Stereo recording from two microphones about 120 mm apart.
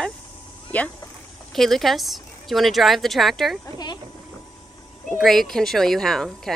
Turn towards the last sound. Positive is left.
turn(degrees=5)  # may be behind; listen again after turning